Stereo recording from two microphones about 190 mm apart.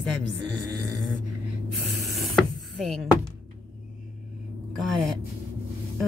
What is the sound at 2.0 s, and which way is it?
Music, centre (ahead or behind).